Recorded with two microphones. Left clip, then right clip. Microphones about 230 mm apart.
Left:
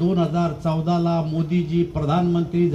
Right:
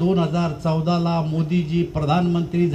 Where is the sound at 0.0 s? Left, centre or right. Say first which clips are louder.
Even; right.